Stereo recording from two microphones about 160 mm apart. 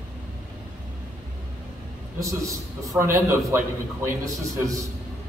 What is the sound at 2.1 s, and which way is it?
A man's voice, 20° right (ahead or behind).